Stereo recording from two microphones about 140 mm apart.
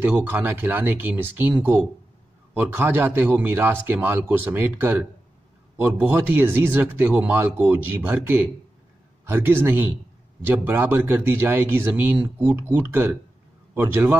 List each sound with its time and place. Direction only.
0.0 s speech: 15° right (ahead or behind)